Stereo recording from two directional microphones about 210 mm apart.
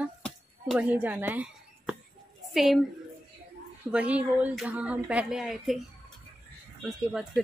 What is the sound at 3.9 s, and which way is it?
Speech, 5° right (ahead or behind).